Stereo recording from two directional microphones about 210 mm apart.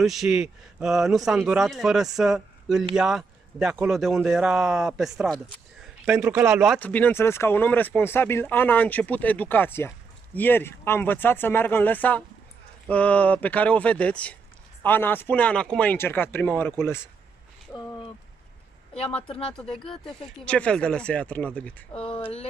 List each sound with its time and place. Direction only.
0.0 s a man's voice: centre (ahead or behind)
6.0 s a man's voice: 10° right (ahead or behind)
6.6 s speech: 5° left (ahead or behind)
19.2 s speech: 25° left (ahead or behind)
19.5 s a man's voice: 5° left (ahead or behind)